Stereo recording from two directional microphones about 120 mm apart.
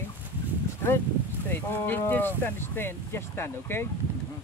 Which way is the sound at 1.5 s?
15° left (ahead or behind).